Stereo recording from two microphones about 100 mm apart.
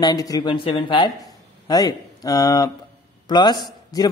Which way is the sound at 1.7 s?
40° left (ahead or behind).